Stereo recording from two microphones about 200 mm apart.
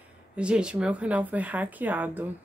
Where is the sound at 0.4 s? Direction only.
5° right (ahead or behind).